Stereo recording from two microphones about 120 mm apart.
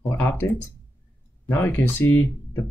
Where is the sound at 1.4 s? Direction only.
20° left (ahead or behind).